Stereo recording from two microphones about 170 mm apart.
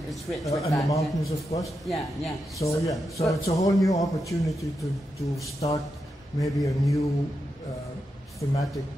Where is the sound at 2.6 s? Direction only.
20° left (ahead or behind).